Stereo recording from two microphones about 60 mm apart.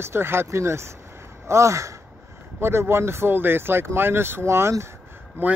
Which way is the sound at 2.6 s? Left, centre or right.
Right.